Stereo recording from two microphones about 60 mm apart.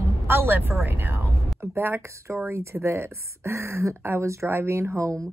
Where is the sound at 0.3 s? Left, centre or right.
Right.